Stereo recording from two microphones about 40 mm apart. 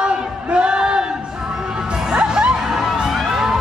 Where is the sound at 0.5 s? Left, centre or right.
Right.